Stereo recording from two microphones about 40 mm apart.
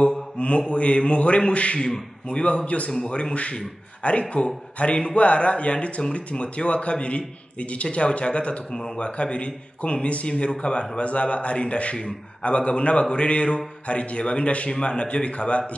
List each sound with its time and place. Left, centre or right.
0.4 s a man's voice: left